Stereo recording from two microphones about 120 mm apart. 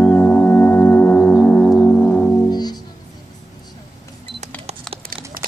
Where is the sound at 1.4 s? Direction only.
10° left (ahead or behind).